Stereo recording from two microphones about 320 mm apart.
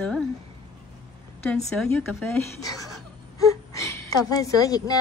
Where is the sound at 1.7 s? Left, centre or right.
Centre.